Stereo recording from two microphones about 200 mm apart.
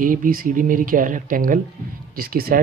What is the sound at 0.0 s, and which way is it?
Speech, 45° right (ahead or behind).